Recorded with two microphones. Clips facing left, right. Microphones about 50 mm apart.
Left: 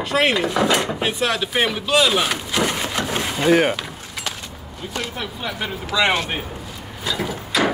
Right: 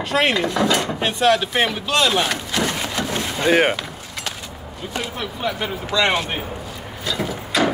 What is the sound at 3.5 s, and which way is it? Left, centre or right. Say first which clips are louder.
Speech: even; right.